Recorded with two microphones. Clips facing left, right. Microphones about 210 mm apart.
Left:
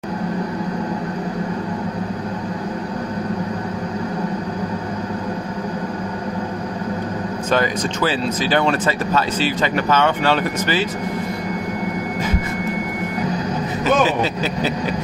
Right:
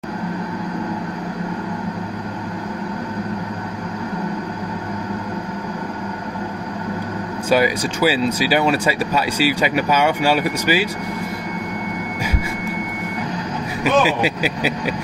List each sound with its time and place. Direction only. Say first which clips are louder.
7.4 s speech: right 3 dB; 10° right (ahead or behind)
13.8 s speech: right 1 dB; 10° right (ahead or behind)